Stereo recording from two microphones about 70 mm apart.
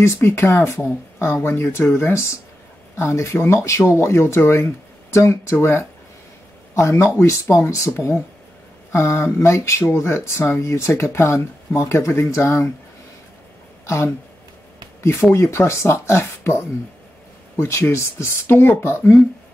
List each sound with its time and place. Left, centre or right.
0.0 s speech: left
13.8 s speech: left